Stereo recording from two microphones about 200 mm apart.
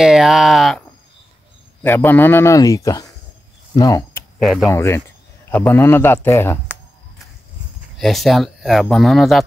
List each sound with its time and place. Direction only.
0.0 s a man's voice: centre (ahead or behind); by 4.2 s 20° left (ahead or behind)
4.4 s speech: centre (ahead or behind)
4.6 s a man's voice: 15° left (ahead or behind)
8.0 s speech: centre (ahead or behind)